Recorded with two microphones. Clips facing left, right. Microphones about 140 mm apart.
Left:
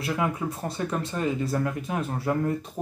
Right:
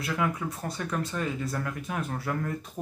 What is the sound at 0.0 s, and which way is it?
Speech, 25° left (ahead or behind).